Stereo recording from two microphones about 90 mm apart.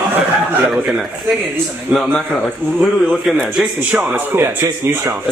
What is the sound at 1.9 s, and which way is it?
Speech, 15° right (ahead or behind).